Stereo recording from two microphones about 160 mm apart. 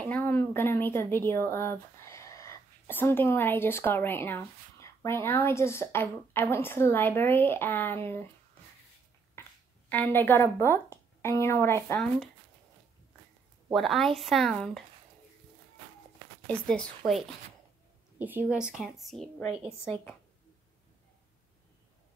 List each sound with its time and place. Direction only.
0.0 s speech: 10° left (ahead or behind)
9.4 s a sound: 15° left (ahead or behind)
9.8 s speech: 10° left (ahead or behind)
13.7 s a woman's voice: centre (ahead or behind)
16.4 s a woman's voice: 5° left (ahead or behind)
18.2 s a woman's voice: 10° right (ahead or behind)